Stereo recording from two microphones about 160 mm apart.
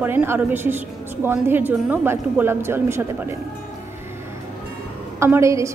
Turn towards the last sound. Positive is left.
turn(degrees=-20)  # may be behind; listen again after turning